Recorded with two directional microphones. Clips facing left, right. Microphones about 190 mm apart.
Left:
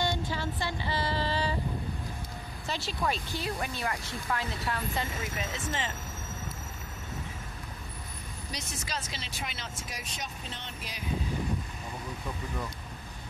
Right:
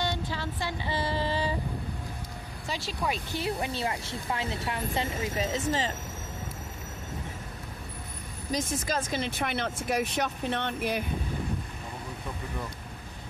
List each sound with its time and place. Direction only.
0.0 s music: centre (ahead or behind)
0.8 s music: 20° right (ahead or behind)
2.7 s speech: 10° right (ahead or behind)
3.4 s speech: 25° right (ahead or behind)
8.5 s speech: 50° right (ahead or behind)